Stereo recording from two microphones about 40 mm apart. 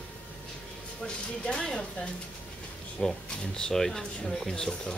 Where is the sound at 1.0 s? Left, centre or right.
Centre.